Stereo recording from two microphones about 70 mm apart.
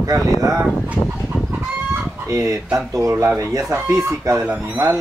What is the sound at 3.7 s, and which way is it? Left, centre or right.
Speech, right.